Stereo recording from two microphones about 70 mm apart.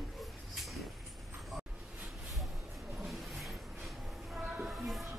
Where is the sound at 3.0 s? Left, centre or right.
Centre.